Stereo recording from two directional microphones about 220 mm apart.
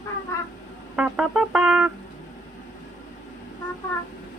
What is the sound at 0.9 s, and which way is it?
Speech, 5° right (ahead or behind).